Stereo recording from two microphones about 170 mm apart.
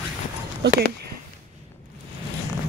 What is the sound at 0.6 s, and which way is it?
Speech, 75° right (ahead or behind).